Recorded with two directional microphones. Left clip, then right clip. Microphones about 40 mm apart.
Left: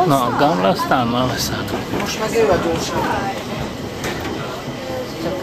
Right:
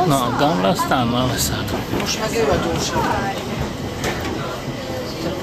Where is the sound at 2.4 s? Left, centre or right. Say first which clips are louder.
Left 2 dB; right.